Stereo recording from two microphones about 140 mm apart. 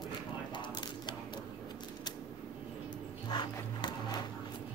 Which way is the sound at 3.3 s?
30° left (ahead or behind).